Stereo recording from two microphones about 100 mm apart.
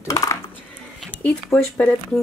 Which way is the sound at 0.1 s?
35° left (ahead or behind).